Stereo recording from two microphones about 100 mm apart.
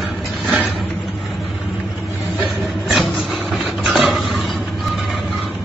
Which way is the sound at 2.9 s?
Centre (ahead or behind).